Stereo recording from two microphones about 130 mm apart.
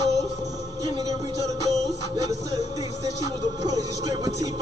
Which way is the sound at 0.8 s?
30° right (ahead or behind).